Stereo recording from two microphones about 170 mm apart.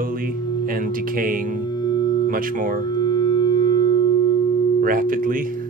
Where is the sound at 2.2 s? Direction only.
55° right (ahead or behind).